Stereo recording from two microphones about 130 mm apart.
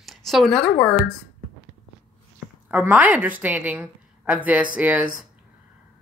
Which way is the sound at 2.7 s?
10° right (ahead or behind).